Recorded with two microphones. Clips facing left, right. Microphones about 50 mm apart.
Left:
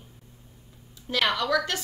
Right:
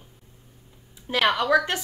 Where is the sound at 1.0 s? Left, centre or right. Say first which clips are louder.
Right 4 dB; right.